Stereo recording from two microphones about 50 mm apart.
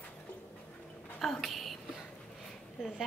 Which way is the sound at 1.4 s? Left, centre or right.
Centre.